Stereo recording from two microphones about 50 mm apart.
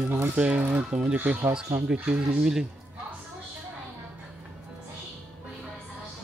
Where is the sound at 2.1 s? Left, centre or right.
Right.